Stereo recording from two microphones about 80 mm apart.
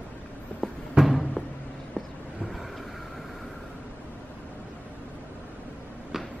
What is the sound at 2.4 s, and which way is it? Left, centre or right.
Vehicle, centre.